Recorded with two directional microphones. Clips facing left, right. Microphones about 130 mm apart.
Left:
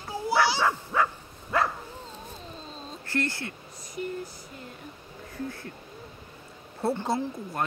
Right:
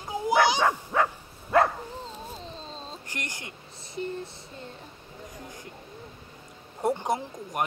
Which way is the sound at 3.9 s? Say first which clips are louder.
Even; 30° right (ahead or behind).